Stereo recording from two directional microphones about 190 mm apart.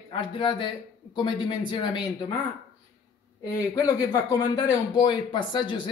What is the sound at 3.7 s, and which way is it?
Speech, 15° left (ahead or behind).